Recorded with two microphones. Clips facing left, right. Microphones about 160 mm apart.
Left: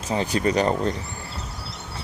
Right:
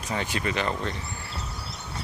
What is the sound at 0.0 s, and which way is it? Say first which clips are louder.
Speech: left 6 dB; 30° left (ahead or behind).